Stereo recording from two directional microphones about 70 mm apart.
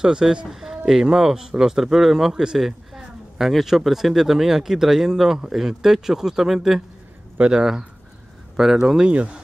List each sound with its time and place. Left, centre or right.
0.0 s speech: centre
7.3 s speech: centre